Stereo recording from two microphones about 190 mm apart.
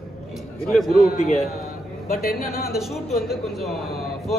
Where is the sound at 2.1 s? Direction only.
50° left (ahead or behind).